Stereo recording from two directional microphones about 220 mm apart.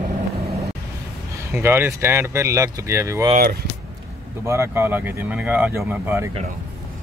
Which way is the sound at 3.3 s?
45° right (ahead or behind).